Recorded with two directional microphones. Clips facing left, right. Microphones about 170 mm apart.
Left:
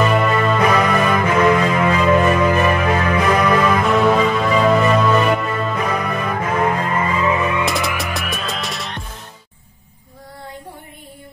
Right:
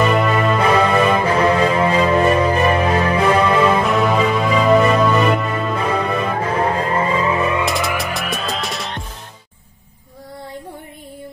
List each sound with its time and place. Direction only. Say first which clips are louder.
0.1 s music: even; centre (ahead or behind)
0.6 s music: right 1 dB; 30° right (ahead or behind)
3.9 s music: left 1 dB; 5° right (ahead or behind)
5.8 s music: right 2 dB; 30° right (ahead or behind)
7.6 s music: right 1 dB; centre (ahead or behind)